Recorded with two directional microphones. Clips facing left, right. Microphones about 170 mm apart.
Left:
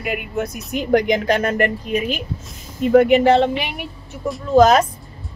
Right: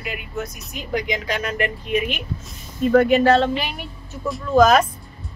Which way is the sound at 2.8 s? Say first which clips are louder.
Left 2 dB; 20° left (ahead or behind).